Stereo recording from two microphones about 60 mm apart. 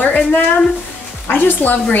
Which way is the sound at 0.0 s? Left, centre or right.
Left.